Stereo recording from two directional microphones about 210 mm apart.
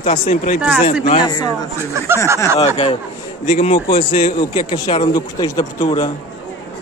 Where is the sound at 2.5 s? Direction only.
30° left (ahead or behind).